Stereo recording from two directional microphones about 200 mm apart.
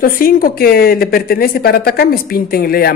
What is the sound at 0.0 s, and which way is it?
Speech, 45° left (ahead or behind).